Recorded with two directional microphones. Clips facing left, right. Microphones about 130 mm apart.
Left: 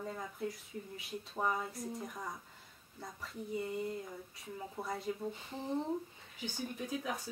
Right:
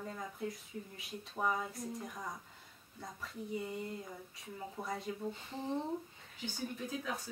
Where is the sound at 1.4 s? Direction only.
Centre (ahead or behind).